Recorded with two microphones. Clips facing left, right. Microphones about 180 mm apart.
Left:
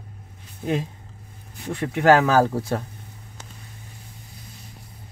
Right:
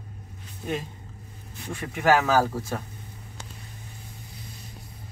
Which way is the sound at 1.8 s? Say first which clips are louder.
Left 5 dB; 65° left (ahead or behind).